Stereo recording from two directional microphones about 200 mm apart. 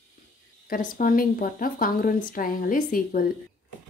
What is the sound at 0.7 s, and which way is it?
Speech, 45° left (ahead or behind).